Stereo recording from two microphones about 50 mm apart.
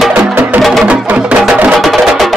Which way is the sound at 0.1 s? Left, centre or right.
Right.